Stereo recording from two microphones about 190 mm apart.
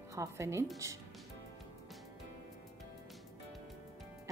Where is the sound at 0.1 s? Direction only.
15° right (ahead or behind).